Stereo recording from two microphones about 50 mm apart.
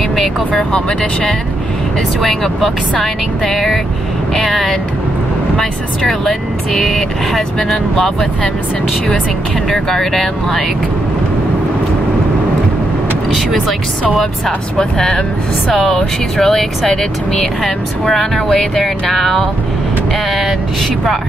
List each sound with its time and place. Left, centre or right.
0.6 s speech: centre
2.2 s speech: centre
9.7 s speech: centre
13.3 s speech: centre
14.8 s speech: centre